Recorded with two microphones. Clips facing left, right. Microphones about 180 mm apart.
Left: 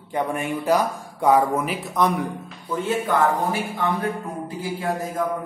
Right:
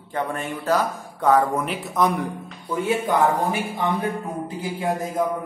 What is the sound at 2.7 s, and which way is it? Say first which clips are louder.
A man's voice: right 1 dB; 10° right (ahead or behind).